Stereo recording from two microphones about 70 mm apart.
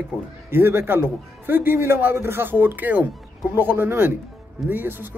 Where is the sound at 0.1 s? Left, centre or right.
Right.